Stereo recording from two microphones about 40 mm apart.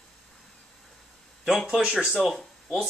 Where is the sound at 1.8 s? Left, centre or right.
Centre.